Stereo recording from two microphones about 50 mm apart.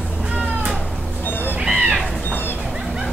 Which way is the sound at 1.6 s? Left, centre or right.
Centre.